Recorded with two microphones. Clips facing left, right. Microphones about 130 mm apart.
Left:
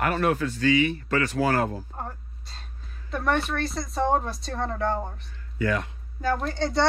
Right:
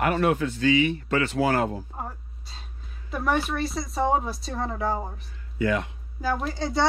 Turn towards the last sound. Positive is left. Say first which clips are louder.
# left 1 dB
turn(degrees=0)  # may be behind; listen again after turning